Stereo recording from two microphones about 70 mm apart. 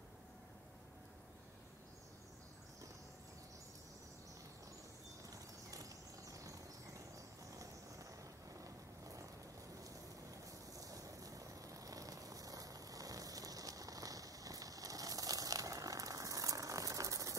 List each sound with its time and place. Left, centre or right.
5.3 s a sound: right
7.5 s vehicle: right
10.4 s vehicle: right